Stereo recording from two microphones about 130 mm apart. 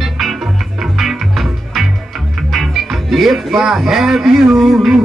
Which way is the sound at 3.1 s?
Centre (ahead or behind).